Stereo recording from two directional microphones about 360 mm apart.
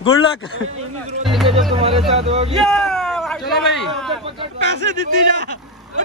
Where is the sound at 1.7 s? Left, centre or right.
Centre.